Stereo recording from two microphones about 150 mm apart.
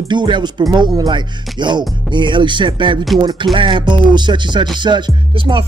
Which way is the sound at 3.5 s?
35° right (ahead or behind).